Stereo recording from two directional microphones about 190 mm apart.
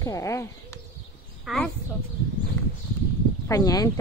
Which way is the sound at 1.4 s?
Centre (ahead or behind).